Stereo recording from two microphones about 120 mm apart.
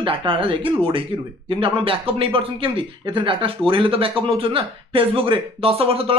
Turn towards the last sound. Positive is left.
turn(degrees=-50)  # may be behind; listen again after turning